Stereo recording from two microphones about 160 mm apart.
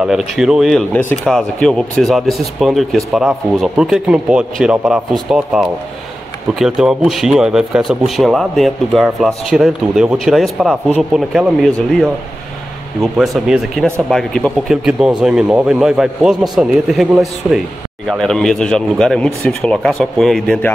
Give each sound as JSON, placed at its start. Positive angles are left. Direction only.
{"t": 0.0, "sound": "speech", "side_deg": -5}